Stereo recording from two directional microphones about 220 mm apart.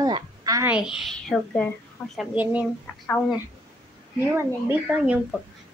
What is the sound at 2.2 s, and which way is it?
Speech, 5° right (ahead or behind).